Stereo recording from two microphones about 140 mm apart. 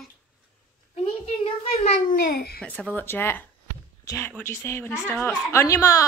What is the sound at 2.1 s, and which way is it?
Babbling, 90° left.